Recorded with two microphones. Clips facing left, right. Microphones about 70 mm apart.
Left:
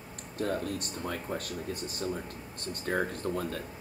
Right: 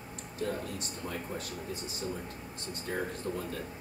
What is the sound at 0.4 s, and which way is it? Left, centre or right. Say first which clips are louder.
Speech: left 4 dB; left.